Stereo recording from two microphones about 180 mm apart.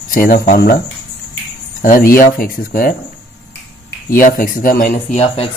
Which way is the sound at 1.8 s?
50° left (ahead or behind).